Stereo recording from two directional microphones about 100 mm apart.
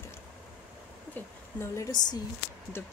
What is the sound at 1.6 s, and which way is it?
Speech, 30° left (ahead or behind).